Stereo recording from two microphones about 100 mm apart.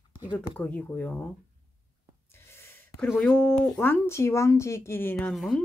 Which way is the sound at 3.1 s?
15° left (ahead or behind).